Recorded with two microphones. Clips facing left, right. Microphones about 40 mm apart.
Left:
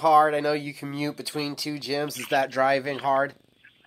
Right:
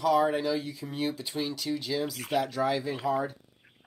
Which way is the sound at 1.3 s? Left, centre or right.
Left.